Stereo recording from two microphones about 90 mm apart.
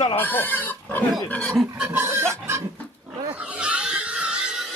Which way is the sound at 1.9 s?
30° right (ahead or behind).